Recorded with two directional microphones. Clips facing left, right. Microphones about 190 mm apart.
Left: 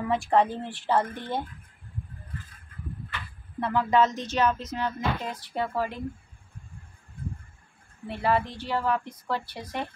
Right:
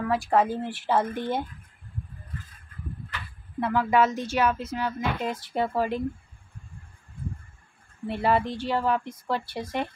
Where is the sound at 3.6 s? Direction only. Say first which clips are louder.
Right 1 dB; 10° right (ahead or behind).